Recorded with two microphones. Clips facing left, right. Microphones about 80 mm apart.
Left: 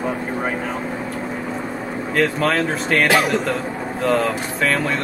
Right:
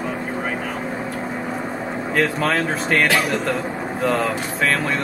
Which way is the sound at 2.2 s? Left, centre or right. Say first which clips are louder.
Left 2 dB; centre.